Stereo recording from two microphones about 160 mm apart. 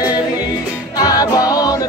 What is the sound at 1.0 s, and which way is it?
Music, 20° left (ahead or behind).